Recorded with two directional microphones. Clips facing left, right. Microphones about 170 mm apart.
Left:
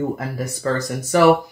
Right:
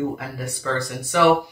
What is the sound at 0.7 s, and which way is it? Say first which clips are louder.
Speech: left 3 dB; 40° left (ahead or behind).